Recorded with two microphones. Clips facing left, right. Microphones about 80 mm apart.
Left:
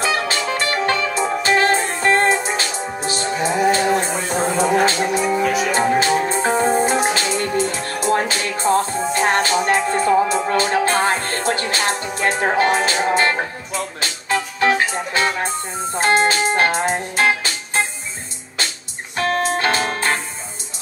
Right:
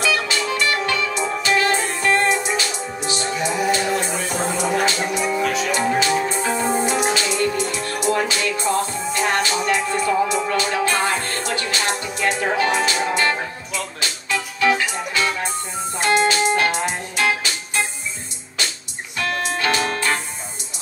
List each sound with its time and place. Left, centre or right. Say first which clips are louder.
0.0 s music: left 1 dB; left
5.4 s music: left 3 dB; centre
5.7 s music: left 2 dB; left
19.1 s music: left 4 dB; left